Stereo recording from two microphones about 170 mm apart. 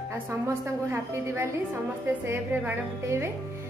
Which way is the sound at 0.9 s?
15° right (ahead or behind).